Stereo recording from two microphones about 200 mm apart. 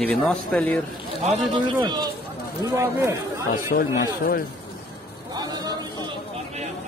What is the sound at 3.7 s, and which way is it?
Speech, 45° left (ahead or behind).